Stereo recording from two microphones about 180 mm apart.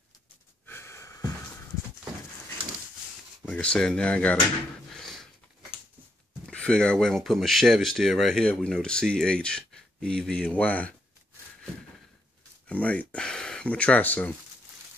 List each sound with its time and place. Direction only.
0.7 s wheeze: 15° left (ahead or behind)
3.4 s speech: 5° left (ahead or behind)
4.9 s a sound: centre (ahead or behind)
6.4 s speech: 5° left (ahead or behind)
12.6 s speech: 10° left (ahead or behind)